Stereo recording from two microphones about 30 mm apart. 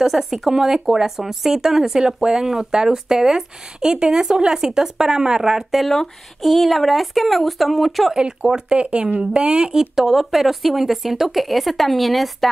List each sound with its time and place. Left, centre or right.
0.0 s speech: centre
8.4 s speech: right
8.7 s speech: right
9.8 s speech: centre